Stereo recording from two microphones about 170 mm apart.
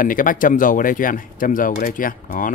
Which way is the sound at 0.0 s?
55° left (ahead or behind).